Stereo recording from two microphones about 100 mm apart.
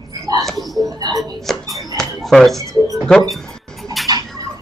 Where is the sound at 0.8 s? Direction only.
35° right (ahead or behind).